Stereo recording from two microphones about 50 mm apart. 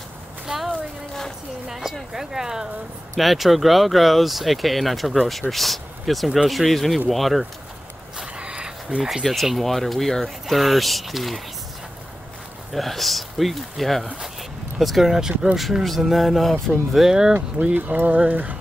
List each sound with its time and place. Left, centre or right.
0.7 s speech: centre
1.7 s speech: centre
3.2 s speech: centre
8.2 s a sound: centre
9.2 s speech: centre
12.7 s speech: centre
15.0 s speech: centre
15.6 s speech: centre
16.9 s speech: centre
17.7 s speech: right